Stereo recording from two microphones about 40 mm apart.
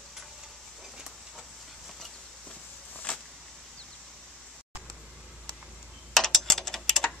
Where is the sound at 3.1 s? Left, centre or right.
Left.